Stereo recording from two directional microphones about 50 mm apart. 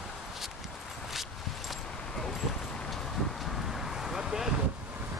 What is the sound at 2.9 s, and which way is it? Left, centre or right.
Vehicle, centre.